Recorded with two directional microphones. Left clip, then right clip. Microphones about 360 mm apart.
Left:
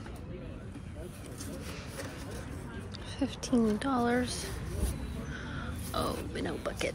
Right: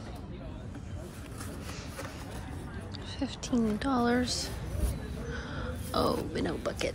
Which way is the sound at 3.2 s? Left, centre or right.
Centre.